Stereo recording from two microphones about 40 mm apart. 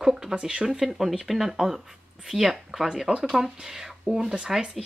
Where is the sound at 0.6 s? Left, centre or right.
Centre.